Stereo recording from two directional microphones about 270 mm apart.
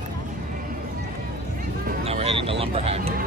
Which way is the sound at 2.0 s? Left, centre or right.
Right.